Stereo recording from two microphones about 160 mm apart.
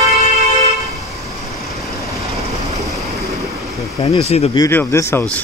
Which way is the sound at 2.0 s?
20° right (ahead or behind).